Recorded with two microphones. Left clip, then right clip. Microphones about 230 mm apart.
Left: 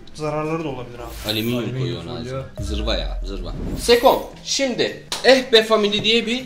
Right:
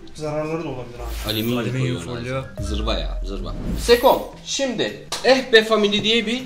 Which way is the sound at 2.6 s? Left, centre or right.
Centre.